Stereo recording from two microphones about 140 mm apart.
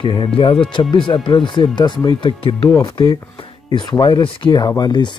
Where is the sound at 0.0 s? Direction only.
35° left (ahead or behind).